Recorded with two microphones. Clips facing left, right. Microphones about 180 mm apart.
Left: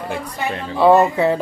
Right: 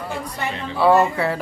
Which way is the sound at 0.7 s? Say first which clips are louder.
Left 3 dB; 20° left (ahead or behind).